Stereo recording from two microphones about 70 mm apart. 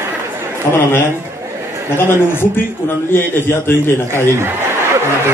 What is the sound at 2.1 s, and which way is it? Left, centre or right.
Speech, left.